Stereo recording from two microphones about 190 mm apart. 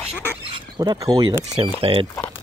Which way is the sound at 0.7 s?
20° right (ahead or behind).